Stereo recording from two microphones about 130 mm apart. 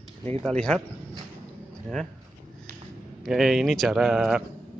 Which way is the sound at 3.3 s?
Centre (ahead or behind).